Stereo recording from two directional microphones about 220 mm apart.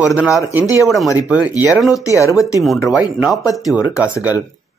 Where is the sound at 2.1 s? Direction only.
15° left (ahead or behind).